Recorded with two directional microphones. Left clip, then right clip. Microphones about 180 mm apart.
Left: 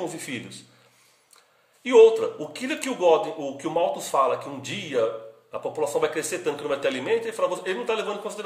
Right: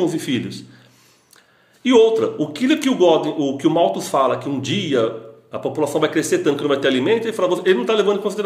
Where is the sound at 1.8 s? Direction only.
10° left (ahead or behind).